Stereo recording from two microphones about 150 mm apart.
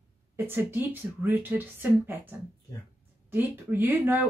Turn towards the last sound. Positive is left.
turn(degrees=-15)  # may be behind; listen again after turning